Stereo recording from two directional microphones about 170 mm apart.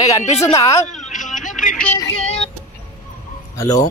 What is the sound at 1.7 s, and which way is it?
Music, 10° left (ahead or behind).